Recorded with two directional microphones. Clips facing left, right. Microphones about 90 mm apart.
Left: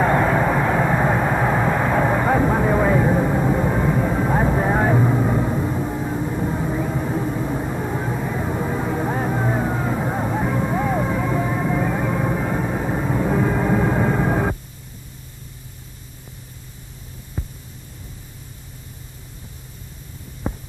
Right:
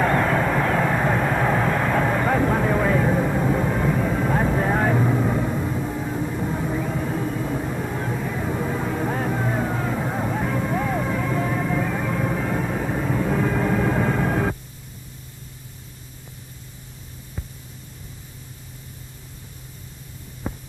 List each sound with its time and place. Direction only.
0.0 s vehicle: 15° left (ahead or behind)
17.4 s hum: 15° left (ahead or behind)